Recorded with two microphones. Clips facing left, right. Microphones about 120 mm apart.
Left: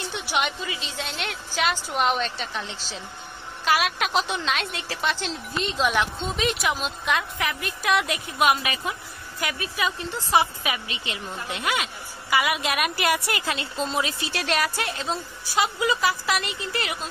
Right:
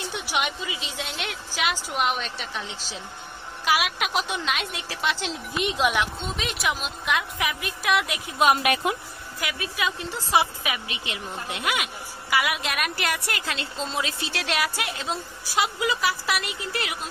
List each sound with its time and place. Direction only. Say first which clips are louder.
0.1 s a woman's voice: left 2 dB; 5° right (ahead or behind)
7.3 s a woman's voice: even; 15° right (ahead or behind)
7.8 s a woman's voice: left 1 dB; centre (ahead or behind)
8.6 s a woman's voice: right 6 dB; 65° right (ahead or behind)
9.4 s a woman's voice: left 1 dB; centre (ahead or behind)